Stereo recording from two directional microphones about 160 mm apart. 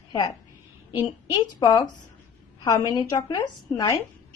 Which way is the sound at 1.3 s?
25° left (ahead or behind).